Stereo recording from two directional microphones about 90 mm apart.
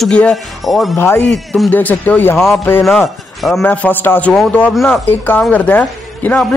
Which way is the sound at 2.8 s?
Centre (ahead or behind).